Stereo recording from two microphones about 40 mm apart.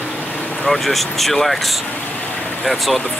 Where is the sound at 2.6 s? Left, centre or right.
Centre.